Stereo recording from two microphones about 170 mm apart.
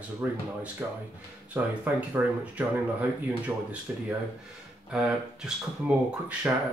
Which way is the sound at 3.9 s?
10° right (ahead or behind).